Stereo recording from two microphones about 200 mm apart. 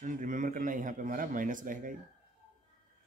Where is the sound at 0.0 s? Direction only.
40° right (ahead or behind).